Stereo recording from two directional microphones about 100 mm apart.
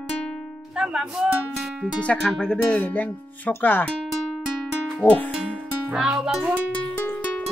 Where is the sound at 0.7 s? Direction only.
10° right (ahead or behind).